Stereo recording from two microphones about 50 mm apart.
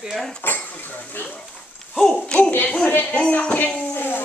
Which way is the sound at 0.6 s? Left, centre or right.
Left.